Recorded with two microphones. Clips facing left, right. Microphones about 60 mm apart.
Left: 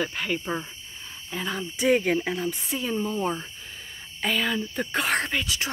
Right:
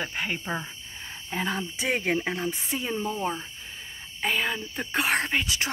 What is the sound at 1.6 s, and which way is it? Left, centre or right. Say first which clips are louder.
Speech: left 6 dB; centre.